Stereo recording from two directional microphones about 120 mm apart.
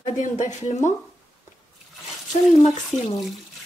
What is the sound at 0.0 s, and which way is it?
Speech, 90° left.